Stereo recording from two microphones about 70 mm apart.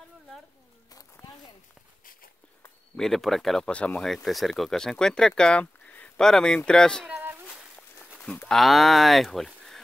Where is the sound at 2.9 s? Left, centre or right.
Centre.